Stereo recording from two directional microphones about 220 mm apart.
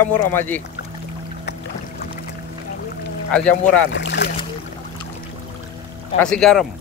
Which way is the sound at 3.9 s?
55° left (ahead or behind).